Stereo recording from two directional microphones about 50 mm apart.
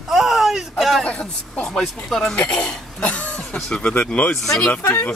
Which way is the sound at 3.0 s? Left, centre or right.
Left.